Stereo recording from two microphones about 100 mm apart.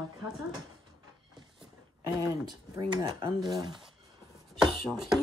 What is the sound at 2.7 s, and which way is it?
Speech, 45° right (ahead or behind).